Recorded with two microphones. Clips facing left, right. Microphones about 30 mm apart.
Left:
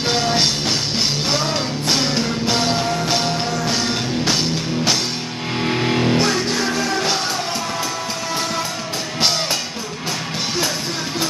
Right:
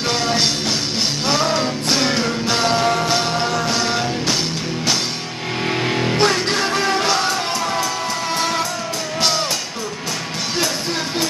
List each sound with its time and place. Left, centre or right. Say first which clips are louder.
0.1 s music: left 1 dB; centre
5.6 s music: left 1 dB; centre
6.1 s music: right 1 dB; right